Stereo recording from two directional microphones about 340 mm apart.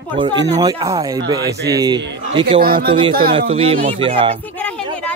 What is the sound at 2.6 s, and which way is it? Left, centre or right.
Speech, right.